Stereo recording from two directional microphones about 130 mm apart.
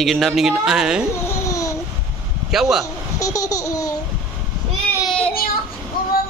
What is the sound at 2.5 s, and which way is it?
Speech, centre (ahead or behind).